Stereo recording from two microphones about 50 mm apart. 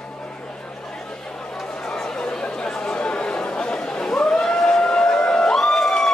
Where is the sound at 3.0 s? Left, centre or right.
Left.